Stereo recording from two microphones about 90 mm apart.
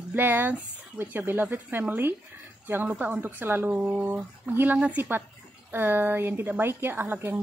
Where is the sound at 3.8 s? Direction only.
10° right (ahead or behind).